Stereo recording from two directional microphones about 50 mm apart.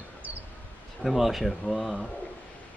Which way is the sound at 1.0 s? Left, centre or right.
Centre.